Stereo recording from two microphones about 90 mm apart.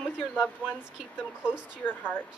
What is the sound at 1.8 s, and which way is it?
Speech, 20° left (ahead or behind).